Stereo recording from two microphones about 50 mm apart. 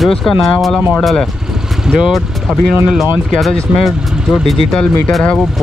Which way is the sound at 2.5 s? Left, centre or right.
Centre.